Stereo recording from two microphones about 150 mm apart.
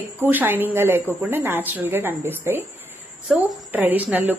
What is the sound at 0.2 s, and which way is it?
A woman's voice, 15° right (ahead or behind).